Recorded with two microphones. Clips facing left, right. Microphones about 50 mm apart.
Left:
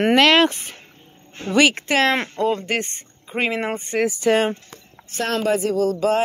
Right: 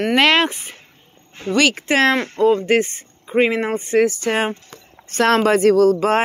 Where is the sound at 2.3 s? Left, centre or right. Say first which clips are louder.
Right 6 dB; centre.